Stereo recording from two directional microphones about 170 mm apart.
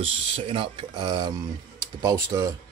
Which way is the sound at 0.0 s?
30° right (ahead or behind).